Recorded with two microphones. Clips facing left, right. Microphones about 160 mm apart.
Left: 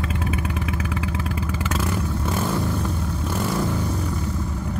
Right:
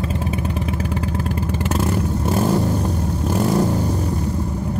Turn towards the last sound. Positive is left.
turn(degrees=-40)  # may be behind; listen again after turning